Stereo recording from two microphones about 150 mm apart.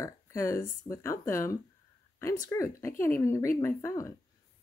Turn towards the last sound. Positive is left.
turn(degrees=20)  # may be behind; listen again after turning